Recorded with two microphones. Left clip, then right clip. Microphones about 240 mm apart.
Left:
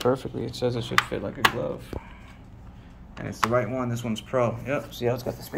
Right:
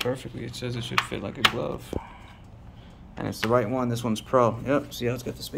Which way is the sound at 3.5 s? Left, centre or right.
Centre.